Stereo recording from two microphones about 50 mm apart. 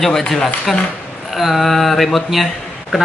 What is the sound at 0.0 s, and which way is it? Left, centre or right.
Speech, centre.